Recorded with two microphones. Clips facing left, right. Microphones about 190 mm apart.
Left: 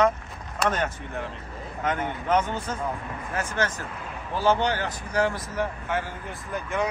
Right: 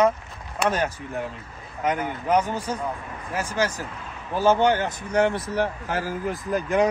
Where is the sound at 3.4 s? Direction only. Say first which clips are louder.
Right 3 dB; 35° right (ahead or behind).